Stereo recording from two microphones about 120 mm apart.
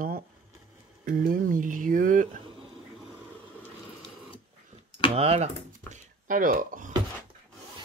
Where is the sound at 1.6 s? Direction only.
90° right.